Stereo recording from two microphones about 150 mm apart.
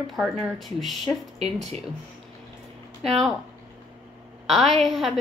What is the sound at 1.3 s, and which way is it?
Speech, 40° right (ahead or behind).